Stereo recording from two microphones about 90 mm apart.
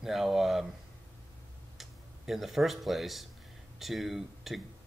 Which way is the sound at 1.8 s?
5° right (ahead or behind).